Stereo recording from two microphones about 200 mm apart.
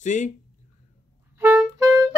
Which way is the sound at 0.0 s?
40° left (ahead or behind).